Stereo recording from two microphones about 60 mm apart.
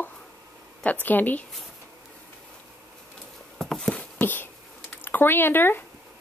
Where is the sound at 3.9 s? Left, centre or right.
Left.